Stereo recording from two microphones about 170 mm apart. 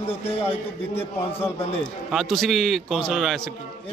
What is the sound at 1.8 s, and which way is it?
A man's voice, centre (ahead or behind).